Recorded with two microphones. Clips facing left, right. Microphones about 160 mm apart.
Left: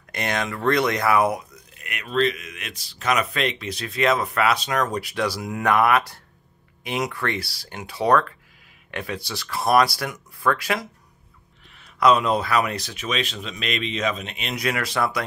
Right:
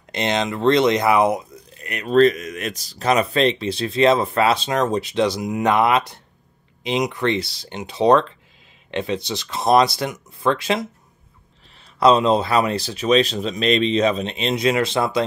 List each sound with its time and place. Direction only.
0.1 s speech: 25° right (ahead or behind)
1.8 s speech: 35° right (ahead or behind)